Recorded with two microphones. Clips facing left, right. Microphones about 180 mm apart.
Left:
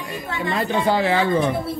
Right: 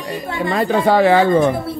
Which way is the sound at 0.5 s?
60° right (ahead or behind).